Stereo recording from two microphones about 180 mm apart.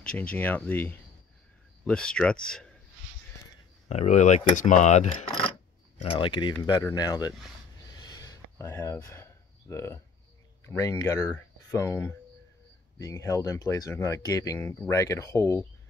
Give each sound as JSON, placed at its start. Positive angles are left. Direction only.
{"t": 0.0, "sound": "speech", "side_deg": 5}
{"t": 3.9, "sound": "speech", "side_deg": 40}
{"t": 7.9, "sound": "a sound", "side_deg": 20}
{"t": 10.6, "sound": "speech", "side_deg": 15}